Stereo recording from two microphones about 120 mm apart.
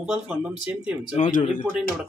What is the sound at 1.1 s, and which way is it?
Speech, 90° left.